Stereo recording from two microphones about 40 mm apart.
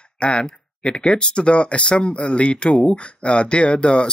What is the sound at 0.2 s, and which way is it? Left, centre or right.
Speech, left.